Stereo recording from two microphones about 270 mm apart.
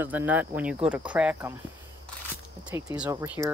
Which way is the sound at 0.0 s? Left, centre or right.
Centre.